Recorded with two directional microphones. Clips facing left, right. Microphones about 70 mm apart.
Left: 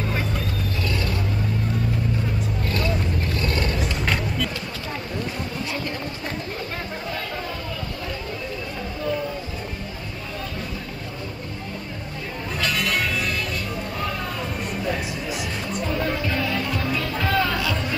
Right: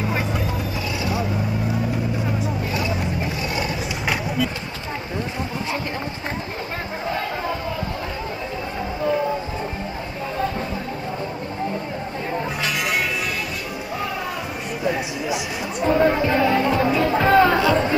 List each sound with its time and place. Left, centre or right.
2.7 s vehicle: centre
15.9 s music: right